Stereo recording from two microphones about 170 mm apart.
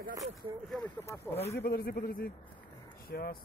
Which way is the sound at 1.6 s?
65° left (ahead or behind).